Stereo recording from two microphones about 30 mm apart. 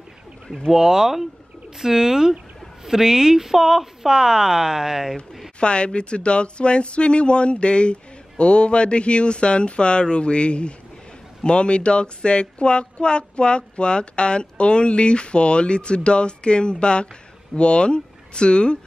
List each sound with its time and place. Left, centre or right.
0.7 s speech: centre
5.6 s speech: left